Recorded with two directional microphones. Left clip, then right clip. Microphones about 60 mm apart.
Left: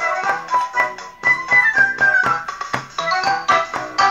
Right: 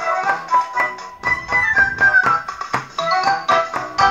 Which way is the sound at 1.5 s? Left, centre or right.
Right.